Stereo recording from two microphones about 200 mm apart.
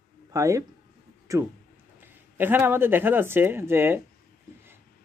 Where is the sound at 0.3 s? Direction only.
15° right (ahead or behind).